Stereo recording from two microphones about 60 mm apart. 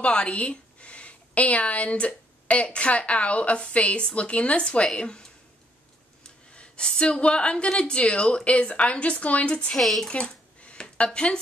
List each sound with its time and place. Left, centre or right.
0.0 s a woman's voice: centre
6.2 s a woman's voice: centre
9.8 s speech: centre
10.0 s a sound: centre